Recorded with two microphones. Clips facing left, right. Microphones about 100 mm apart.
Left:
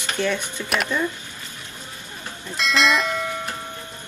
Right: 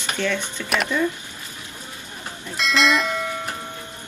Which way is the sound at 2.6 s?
Centre (ahead or behind).